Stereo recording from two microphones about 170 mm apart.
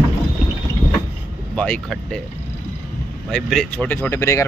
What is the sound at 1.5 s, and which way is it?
Speech, 5° left (ahead or behind).